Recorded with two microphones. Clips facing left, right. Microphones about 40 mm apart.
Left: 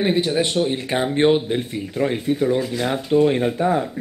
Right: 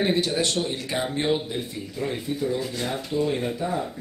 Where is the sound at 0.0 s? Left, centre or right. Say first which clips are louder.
Left 4 dB; centre.